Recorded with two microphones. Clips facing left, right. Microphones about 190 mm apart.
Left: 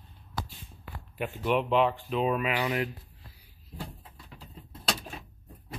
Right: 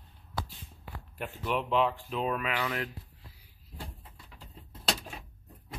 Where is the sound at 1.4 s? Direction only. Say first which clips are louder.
Left 3 dB; centre (ahead or behind).